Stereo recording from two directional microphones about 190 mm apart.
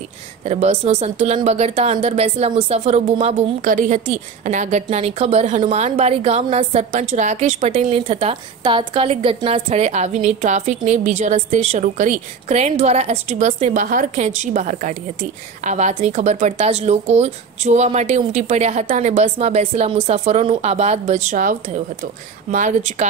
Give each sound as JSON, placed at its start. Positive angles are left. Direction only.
{"t": 0.5, "sound": "speech", "side_deg": -35}